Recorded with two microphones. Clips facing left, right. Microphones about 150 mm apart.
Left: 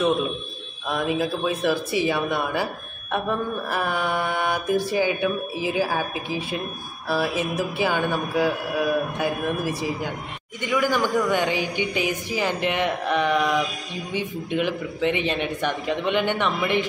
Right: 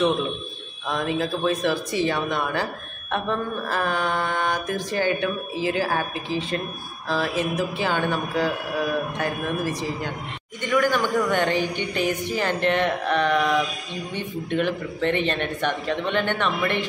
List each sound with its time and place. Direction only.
0.8 s speech: 10° left (ahead or behind)